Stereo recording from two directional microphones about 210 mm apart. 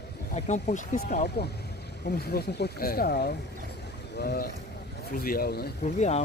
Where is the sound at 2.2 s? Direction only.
50° left (ahead or behind).